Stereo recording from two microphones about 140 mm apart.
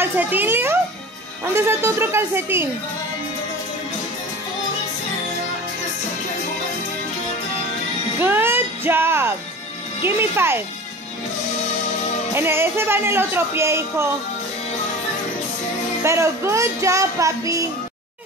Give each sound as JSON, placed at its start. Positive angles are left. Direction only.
{"t": 0.0, "sound": "speech", "side_deg": -15}
{"t": 8.2, "sound": "music", "side_deg": -15}
{"t": 10.0, "sound": "speech", "side_deg": -15}
{"t": 12.4, "sound": "speech", "side_deg": -15}
{"t": 16.0, "sound": "speech", "side_deg": -20}